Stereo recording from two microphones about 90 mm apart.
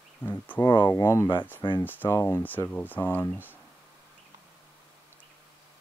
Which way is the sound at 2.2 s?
25° left (ahead or behind).